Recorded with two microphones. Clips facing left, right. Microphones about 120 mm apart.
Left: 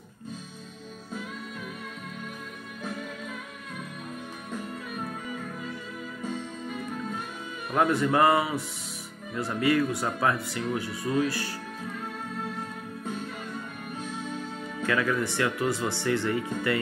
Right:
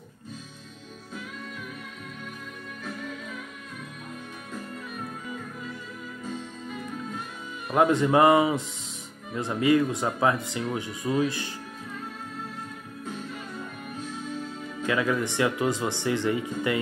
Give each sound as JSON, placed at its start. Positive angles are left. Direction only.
{"t": 7.7, "sound": "speech", "side_deg": -20}
{"t": 14.8, "sound": "speech", "side_deg": -20}